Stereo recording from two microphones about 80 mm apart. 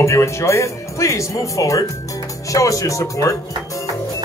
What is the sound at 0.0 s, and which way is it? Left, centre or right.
Speech, left.